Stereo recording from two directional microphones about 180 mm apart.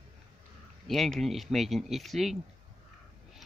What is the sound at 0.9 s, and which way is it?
Speech, centre (ahead or behind).